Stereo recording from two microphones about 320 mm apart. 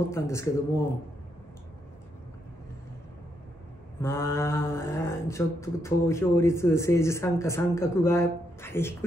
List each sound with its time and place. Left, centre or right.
0.1 s mantra: centre
4.0 s mantra: centre